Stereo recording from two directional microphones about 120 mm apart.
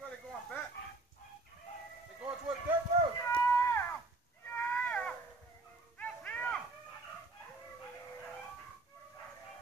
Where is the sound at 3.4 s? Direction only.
20° left (ahead or behind).